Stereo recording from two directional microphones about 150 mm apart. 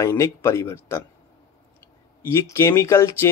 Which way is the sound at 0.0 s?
20° left (ahead or behind).